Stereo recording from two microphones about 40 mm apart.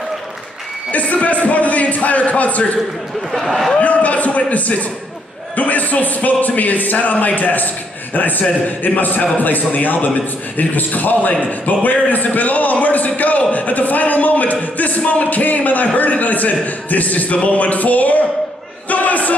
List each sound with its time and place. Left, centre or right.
0.9 s a man's voice: left
3.3 s speech: centre
3.8 s a man's voice: left
18.9 s a sound: left